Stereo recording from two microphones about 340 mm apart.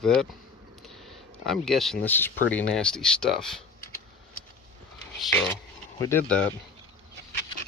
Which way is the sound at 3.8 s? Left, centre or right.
Left.